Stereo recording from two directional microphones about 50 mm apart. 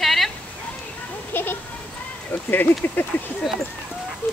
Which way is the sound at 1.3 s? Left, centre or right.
Left.